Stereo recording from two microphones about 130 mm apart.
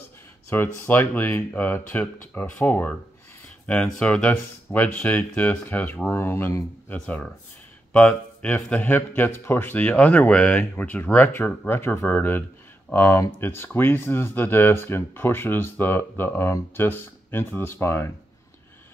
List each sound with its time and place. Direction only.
0.5 s speech: 20° left (ahead or behind)